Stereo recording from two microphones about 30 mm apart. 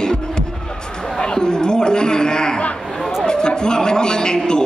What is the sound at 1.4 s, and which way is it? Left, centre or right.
A man's voice, left.